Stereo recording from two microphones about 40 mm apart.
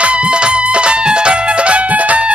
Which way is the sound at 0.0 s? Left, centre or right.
Right.